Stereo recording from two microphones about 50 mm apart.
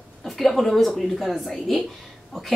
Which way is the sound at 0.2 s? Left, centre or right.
Centre.